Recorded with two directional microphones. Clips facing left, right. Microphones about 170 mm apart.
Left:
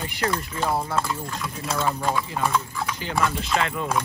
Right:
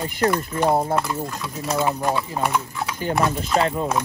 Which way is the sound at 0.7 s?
45° right (ahead or behind).